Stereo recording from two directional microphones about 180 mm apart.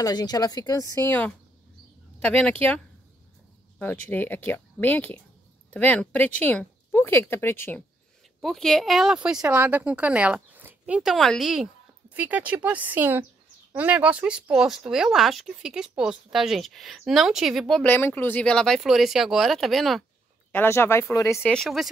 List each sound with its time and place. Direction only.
0.0 s a woman's voice: 20° left (ahead or behind); by 2.5 s 5° left (ahead or behind)
3.8 s speech: 10° left (ahead or behind)
8.4 s a woman's voice: centre (ahead or behind)
20.5 s speech: 10° left (ahead or behind)
21.5 s a woman's voice: centre (ahead or behind)